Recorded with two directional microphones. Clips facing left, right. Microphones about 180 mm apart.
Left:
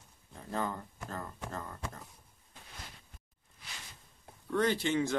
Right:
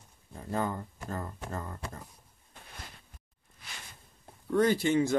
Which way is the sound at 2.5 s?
55° right (ahead or behind).